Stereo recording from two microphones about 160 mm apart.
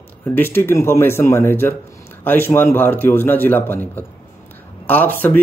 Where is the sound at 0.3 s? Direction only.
15° left (ahead or behind).